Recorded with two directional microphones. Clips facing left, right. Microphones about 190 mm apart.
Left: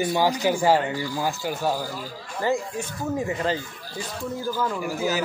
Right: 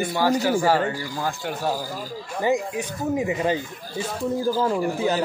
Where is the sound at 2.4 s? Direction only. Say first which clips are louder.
Right 2 dB; 15° right (ahead or behind).